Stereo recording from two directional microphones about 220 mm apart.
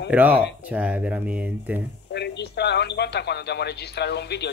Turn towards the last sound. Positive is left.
turn(degrees=50)  # may be behind; listen again after turning